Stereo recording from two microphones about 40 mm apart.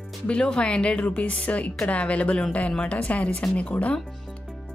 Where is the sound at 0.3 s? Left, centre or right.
Left.